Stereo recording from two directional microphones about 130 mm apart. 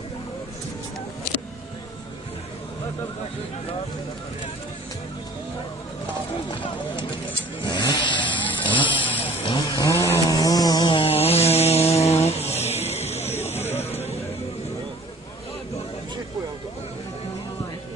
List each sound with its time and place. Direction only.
6.5 s speech: 35° left (ahead or behind)
7.6 s vehicle: 35° left (ahead or behind)
9.7 s chainsaw: 25° left (ahead or behind)
10.0 s a sound: 25° left (ahead or behind); by 13.3 s 55° left (ahead or behind)